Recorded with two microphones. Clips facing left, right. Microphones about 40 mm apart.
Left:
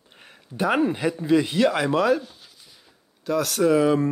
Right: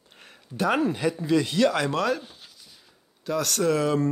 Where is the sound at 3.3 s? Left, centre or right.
Centre.